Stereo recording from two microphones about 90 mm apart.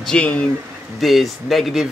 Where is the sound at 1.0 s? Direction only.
Centre (ahead or behind).